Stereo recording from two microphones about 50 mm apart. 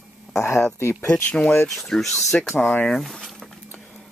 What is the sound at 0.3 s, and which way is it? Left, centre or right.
Speech, left.